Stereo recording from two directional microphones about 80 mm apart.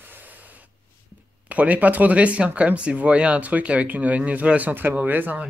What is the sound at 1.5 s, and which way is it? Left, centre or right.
Speech, centre.